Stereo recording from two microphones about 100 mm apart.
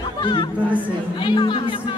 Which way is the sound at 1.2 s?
50° left (ahead or behind).